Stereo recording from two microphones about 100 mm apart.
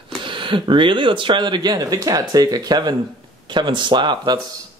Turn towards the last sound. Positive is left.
turn(degrees=-50)  # may be behind; listen again after turning